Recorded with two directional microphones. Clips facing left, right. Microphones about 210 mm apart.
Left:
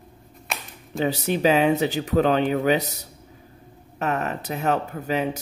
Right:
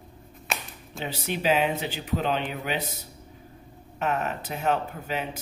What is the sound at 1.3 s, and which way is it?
Speech, 40° left (ahead or behind).